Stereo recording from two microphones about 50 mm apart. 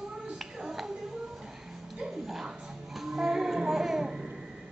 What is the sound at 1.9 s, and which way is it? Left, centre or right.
Music, centre.